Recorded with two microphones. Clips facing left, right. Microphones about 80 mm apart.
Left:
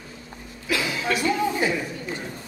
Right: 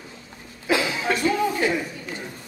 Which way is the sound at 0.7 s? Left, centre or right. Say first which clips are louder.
Right 3 dB; right.